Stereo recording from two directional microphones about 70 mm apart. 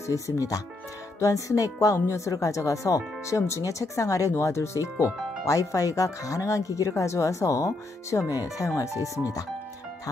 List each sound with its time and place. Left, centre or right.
0.0 s speech: left